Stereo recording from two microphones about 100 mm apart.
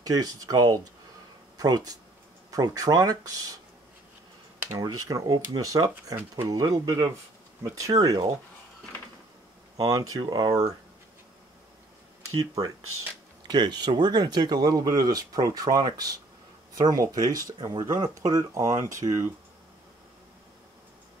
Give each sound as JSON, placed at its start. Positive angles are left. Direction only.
{"t": 0.0, "sound": "speech", "side_deg": -40}
{"t": 4.6, "sound": "speech", "side_deg": -40}
{"t": 9.8, "sound": "speech", "side_deg": -35}
{"t": 10.2, "sound": "speech", "side_deg": -50}
{"t": 12.4, "sound": "speech", "side_deg": -35}